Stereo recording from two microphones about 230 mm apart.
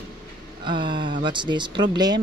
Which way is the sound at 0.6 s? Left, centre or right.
Right.